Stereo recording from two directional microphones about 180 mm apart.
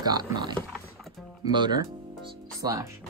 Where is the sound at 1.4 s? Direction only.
25° right (ahead or behind).